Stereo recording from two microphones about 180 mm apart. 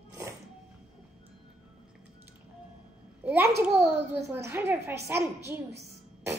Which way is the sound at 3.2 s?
15° right (ahead or behind).